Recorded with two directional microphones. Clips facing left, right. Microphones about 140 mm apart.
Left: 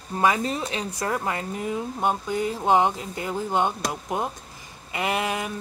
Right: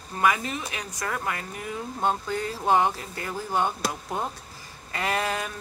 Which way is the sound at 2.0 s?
15° left (ahead or behind).